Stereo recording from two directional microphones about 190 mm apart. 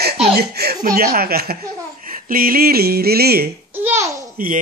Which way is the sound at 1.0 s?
55° right (ahead or behind).